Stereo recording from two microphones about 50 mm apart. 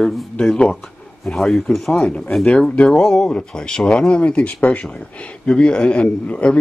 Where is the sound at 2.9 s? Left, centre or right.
Centre.